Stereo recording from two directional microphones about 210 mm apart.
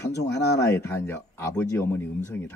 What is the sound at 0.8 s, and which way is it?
Speech, 10° left (ahead or behind).